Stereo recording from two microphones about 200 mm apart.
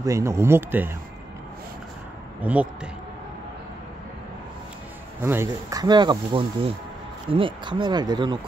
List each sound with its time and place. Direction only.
0.0 s speech: 15° right (ahead or behind)
2.4 s speech: 5° right (ahead or behind)
5.2 s speech: 15° right (ahead or behind)